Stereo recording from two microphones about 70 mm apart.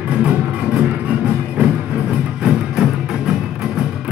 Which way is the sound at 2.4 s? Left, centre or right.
Centre.